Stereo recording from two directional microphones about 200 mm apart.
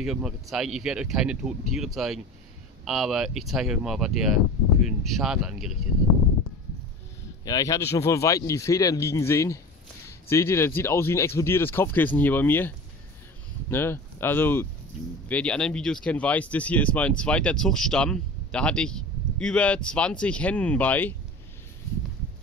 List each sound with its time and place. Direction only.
0.0 s speech: centre (ahead or behind)
7.4 s speech: 15° left (ahead or behind)